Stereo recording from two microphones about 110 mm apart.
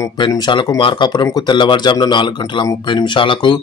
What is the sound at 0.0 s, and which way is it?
A man's voice, 35° left (ahead or behind).